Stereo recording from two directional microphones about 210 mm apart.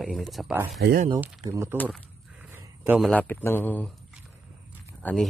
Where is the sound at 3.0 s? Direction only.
10° left (ahead or behind).